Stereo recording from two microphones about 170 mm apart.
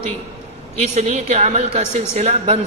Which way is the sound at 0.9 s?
40° right (ahead or behind).